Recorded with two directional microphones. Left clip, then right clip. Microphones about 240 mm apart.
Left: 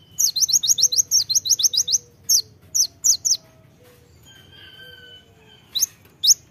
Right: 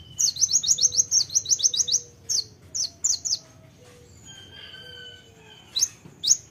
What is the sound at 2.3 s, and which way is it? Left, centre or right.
Bird, left.